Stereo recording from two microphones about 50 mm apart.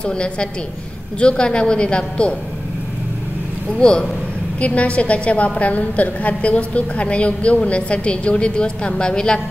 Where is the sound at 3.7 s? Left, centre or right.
Centre.